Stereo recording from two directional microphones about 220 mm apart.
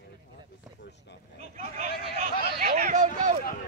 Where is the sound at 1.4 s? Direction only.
30° right (ahead or behind).